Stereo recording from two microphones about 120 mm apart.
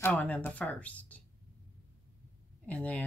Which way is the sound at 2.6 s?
10° left (ahead or behind).